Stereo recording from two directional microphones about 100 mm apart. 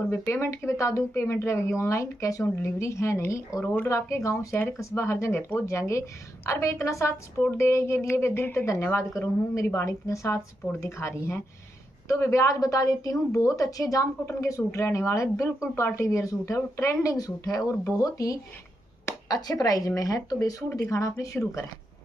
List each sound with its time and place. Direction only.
0.1 s speech: 25° left (ahead or behind)